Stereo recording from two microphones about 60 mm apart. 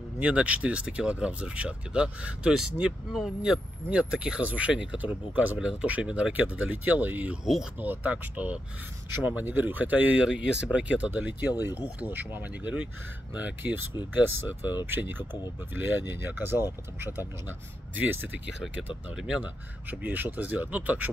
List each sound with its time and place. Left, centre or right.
0.2 s speech: right
3.1 s speech: centre
3.9 s speech: centre
5.6 s speech: centre
10.2 s speech: centre; by 18.4 s right
18.8 s speech: centre
19.4 s speech: right